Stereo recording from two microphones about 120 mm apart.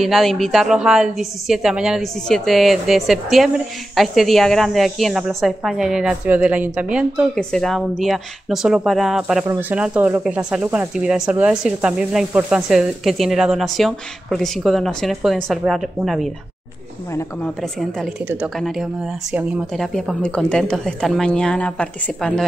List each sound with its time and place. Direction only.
0.0 s a woman's voice: centre (ahead or behind)
7.3 s a woman's voice: 5° left (ahead or behind)
9.4 s a woman's voice: 15° right (ahead or behind)
17.4 s a woman's voice: centre (ahead or behind)
18.2 s speech: 15° right (ahead or behind)
18.6 s a woman's voice: centre (ahead or behind)